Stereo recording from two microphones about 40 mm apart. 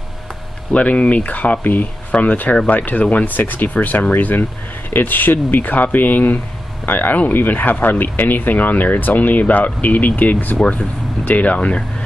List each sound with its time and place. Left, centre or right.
0.7 s speech: left
2.5 s speech: left
2.8 s speech: left
10.6 s speech: left
11.2 s speech: left